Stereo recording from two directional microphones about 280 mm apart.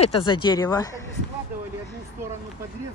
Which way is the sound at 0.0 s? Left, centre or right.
Centre.